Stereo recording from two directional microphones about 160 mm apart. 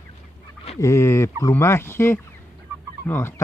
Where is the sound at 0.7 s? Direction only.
15° left (ahead or behind).